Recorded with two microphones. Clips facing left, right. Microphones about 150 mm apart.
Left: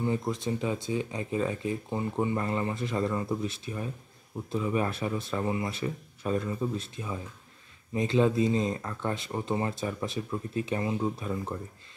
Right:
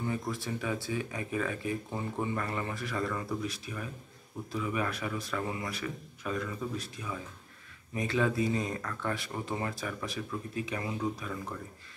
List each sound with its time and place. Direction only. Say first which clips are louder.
0.0 s speech: left 5 dB; 20° left (ahead or behind)